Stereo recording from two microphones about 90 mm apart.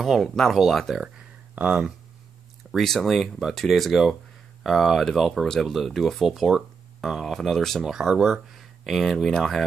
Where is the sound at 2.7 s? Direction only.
5° left (ahead or behind).